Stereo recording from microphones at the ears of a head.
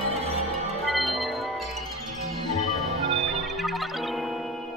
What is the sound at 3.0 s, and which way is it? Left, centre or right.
Music, right.